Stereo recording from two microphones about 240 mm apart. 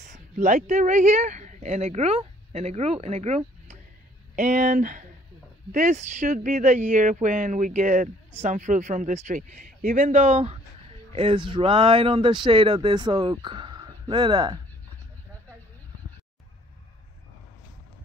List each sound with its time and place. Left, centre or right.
0.0 s speech: right